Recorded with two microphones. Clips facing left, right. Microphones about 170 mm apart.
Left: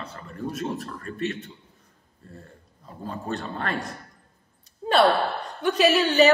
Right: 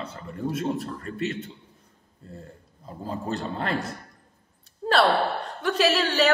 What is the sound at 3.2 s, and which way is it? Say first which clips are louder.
Speech: right 1 dB; 25° right (ahead or behind).